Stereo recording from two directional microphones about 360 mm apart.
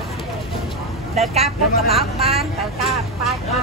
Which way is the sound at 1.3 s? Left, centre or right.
Centre.